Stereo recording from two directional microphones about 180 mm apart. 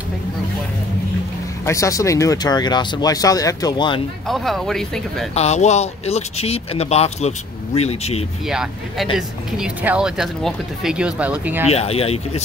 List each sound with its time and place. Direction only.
1.7 s speech: 15° left (ahead or behind)
4.3 s speech: centre (ahead or behind)
5.3 s speech: 35° left (ahead or behind)
8.5 s speech: 5° right (ahead or behind)
11.7 s speech: 35° left (ahead or behind)